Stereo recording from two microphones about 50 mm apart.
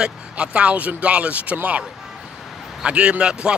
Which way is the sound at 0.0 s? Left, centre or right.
Right.